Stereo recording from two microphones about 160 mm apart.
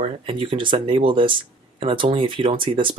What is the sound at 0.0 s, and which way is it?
Speech, 30° right (ahead or behind).